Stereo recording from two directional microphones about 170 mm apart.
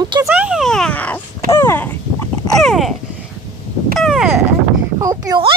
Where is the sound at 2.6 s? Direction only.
Centre (ahead or behind).